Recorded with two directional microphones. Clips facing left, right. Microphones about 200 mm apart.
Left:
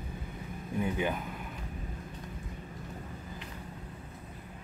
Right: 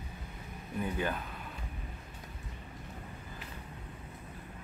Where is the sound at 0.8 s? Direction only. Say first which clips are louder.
Left 3 dB; 15° left (ahead or behind).